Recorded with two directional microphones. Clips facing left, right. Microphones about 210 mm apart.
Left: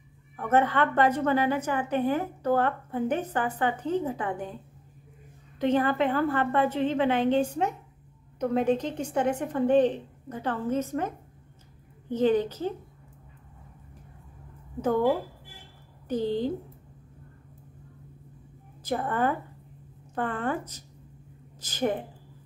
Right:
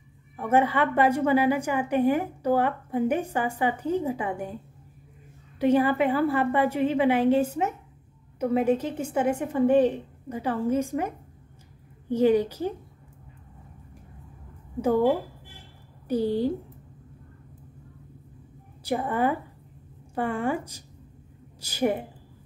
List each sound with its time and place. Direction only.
0.4 s a woman's voice: 10° right (ahead or behind)
5.6 s a woman's voice: 10° right (ahead or behind)
14.8 s a woman's voice: 10° right (ahead or behind)
18.8 s a woman's voice: 10° right (ahead or behind)